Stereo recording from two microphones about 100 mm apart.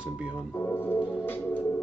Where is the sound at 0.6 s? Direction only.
20° left (ahead or behind).